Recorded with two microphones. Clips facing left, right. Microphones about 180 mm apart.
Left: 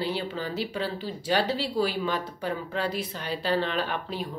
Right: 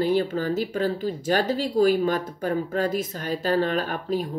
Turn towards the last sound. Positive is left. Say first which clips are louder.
# right 5 dB
turn(degrees=-45)  # may be behind; listen again after turning